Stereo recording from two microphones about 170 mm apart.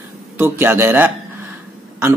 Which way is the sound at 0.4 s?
15° right (ahead or behind).